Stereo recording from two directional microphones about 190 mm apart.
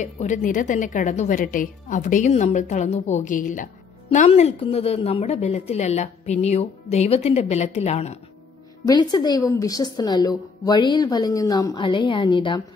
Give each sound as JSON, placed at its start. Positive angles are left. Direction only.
{"t": 0.0, "sound": "a woman's voice", "side_deg": 40}
{"t": 8.8, "sound": "a woman's voice", "side_deg": 20}